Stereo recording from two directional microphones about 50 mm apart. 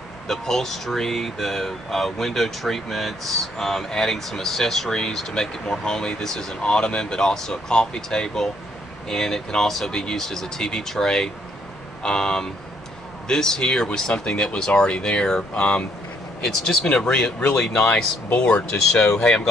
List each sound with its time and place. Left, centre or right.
0.3 s speech: centre
16.4 s speech: centre